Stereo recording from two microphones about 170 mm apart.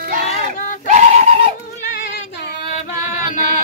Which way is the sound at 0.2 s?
45° left (ahead or behind).